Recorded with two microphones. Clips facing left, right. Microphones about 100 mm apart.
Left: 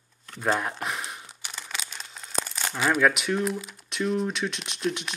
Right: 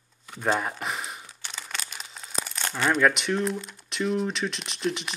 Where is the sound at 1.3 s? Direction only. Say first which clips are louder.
Even; 10° left (ahead or behind).